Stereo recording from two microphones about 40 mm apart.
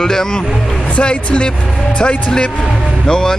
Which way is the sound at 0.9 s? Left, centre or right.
Left.